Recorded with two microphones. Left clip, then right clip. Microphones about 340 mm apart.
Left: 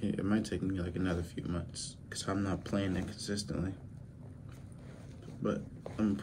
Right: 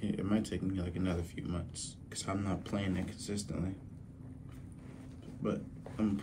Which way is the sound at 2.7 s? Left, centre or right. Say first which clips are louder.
Left 2 dB; right.